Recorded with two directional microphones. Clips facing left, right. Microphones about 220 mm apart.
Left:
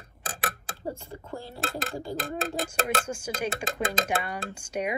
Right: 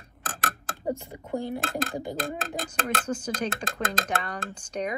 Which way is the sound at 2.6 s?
10° left (ahead or behind).